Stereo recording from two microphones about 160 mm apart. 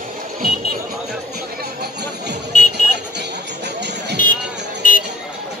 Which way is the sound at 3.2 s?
90° right.